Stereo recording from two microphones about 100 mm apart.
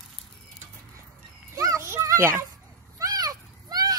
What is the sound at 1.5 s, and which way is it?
Children playing, 35° right (ahead or behind).